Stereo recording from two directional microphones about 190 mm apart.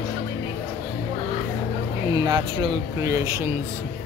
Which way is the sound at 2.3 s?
25° right (ahead or behind).